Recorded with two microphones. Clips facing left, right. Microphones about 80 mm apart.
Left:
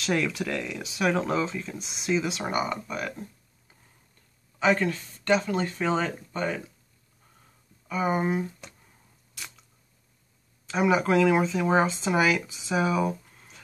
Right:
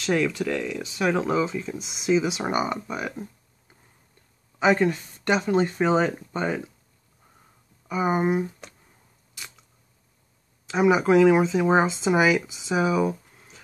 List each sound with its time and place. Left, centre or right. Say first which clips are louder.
0.0 s speech: right 3 dB; centre
4.6 s speech: right 3 dB; centre
7.9 s speech: right 3 dB; centre
10.7 s speech: right 4 dB; centre
12.6 s speech: right 2 dB; centre